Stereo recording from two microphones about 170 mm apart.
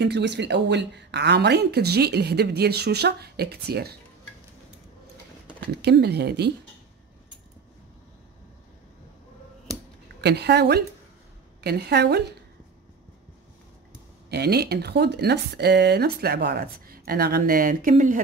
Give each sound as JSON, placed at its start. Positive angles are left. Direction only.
{"t": 0.0, "sound": "a woman's voice", "side_deg": -90}
{"t": 5.6, "sound": "a woman's voice", "side_deg": -75}
{"t": 10.2, "sound": "a woman's voice", "side_deg": -80}
{"t": 14.3, "sound": "a woman's voice", "side_deg": -75}